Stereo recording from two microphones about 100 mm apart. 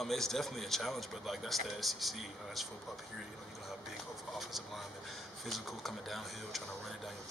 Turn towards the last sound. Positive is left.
turn(degrees=0)  # may be behind; listen again after turning